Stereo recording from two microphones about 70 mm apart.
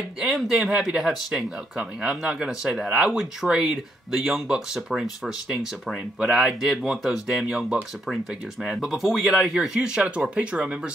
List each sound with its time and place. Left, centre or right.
0.2 s speech: centre